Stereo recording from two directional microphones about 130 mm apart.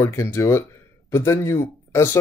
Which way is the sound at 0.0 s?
20° left (ahead or behind).